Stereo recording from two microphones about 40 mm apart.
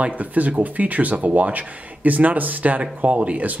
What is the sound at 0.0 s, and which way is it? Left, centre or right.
Speech, right.